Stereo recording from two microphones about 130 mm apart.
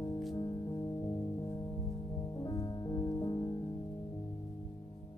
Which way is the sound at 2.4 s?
30° left (ahead or behind).